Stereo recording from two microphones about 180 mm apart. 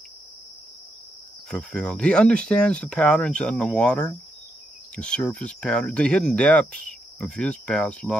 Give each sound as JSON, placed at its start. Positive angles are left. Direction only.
{"t": 1.5, "sound": "speech", "side_deg": 5}